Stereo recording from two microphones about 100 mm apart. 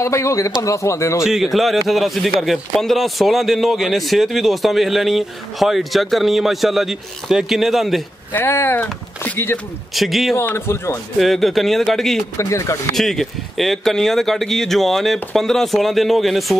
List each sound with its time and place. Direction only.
0.0 s speech: 30° left (ahead or behind)
1.2 s speech: 5° right (ahead or behind)
8.3 s speech: 20° left (ahead or behind)
9.9 s speech: centre (ahead or behind)
10.4 s speech: 25° left (ahead or behind)
11.1 s speech: centre (ahead or behind)
12.4 s speech: 30° left (ahead or behind)
12.9 s speech: 5° left (ahead or behind)